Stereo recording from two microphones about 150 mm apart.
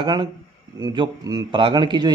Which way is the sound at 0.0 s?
30° right (ahead or behind).